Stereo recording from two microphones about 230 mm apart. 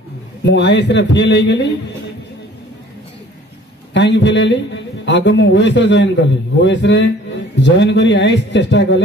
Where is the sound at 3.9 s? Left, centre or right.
Left.